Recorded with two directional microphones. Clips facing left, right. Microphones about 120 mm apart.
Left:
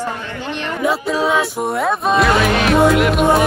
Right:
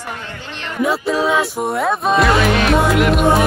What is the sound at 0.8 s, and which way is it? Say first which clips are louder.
Music: right 1 dB; centre (ahead or behind).